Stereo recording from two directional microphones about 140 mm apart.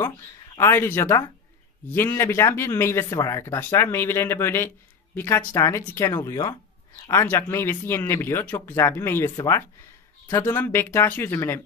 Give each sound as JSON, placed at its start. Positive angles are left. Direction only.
{"t": 0.6, "sound": "speech", "side_deg": 15}